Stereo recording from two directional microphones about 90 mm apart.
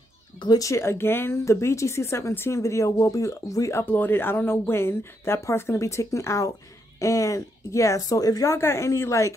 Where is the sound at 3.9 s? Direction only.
20° left (ahead or behind).